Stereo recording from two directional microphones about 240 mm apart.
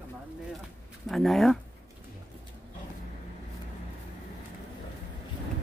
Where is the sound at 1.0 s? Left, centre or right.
Centre.